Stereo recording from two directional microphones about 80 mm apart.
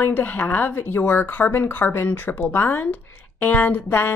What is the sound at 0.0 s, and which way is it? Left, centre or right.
A woman's voice, left.